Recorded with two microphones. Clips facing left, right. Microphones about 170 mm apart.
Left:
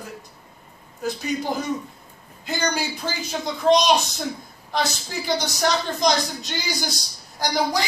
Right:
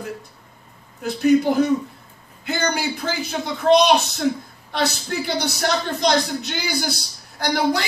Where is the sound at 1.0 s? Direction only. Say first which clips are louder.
Right 9 dB; 60° right (ahead or behind).